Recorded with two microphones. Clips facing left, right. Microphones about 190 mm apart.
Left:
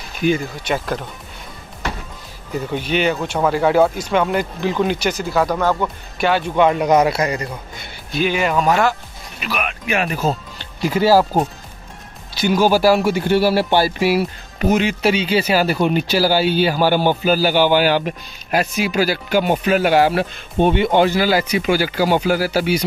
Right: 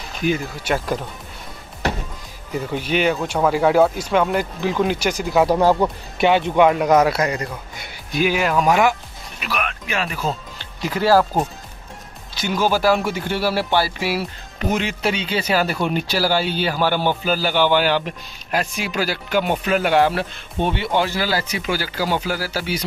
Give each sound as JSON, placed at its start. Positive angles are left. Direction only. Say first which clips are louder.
{"t": 0.3, "sound": "speech", "louder": "left 2 dB", "side_deg": -5}
{"t": 2.7, "sound": "speech", "louder": "left 1 dB", "side_deg": -5}
{"t": 5.5, "sound": "speech", "louder": "right 3 dB", "side_deg": -30}
{"t": 5.8, "sound": "speech", "louder": "right 2 dB", "side_deg": -20}
{"t": 6.6, "sound": "speech", "louder": "left 1 dB", "side_deg": -5}
{"t": 7.8, "sound": "speech", "louder": "even", "side_deg": -10}
{"t": 9.4, "sound": "speech", "louder": "left 2 dB", "side_deg": 5}
{"t": 10.0, "sound": "speech", "louder": "left 4 dB", "side_deg": 40}
{"t": 11.0, "sound": "speech", "louder": "left 2 dB", "side_deg": 5}
{"t": 12.4, "sound": "speech", "louder": "left 5 dB", "side_deg": 10}
{"t": 14.7, "sound": "speech", "louder": "left 5 dB", "side_deg": 5}
{"t": 20.2, "sound": "speech", "louder": "left 5 dB", "side_deg": 15}